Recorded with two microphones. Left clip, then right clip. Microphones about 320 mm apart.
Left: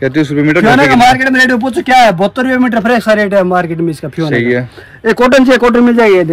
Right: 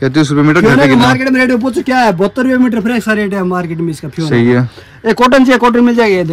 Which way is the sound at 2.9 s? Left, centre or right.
Centre.